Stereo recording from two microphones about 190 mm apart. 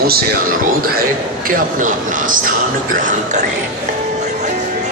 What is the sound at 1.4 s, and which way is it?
Speech, 45° right (ahead or behind).